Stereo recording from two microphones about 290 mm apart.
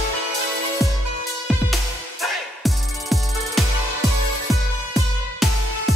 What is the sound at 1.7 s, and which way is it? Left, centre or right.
Music, centre.